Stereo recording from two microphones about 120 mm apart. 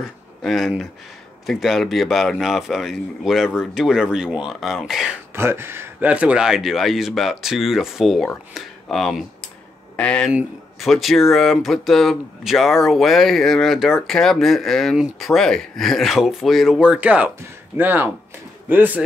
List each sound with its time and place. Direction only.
0.0 s speech: centre (ahead or behind)
5.3 s speech: 20° right (ahead or behind)